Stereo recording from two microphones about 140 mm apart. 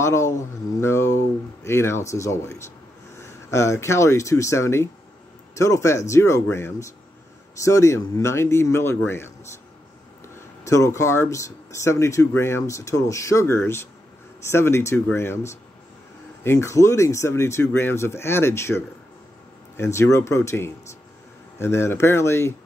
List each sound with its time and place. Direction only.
0.0 s speech: 20° left (ahead or behind)
10.6 s speech: 20° left (ahead or behind)